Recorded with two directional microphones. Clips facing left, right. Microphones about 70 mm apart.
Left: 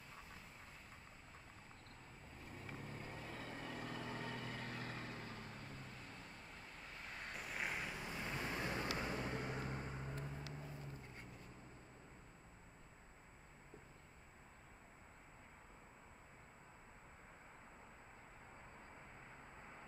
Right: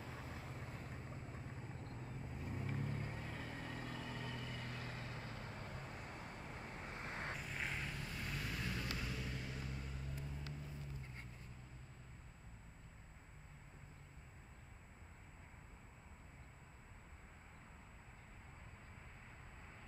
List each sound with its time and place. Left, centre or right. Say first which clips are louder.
0.0 s vehicle: right 6 dB; right
1.9 s vehicle: right 8 dB; right; by 4.0 s centre
4.0 s vehicle: left 1 dB; left
5.1 s vehicle: right 1 dB; right
7.3 s vehicle: left 1 dB; centre; by 10.4 s left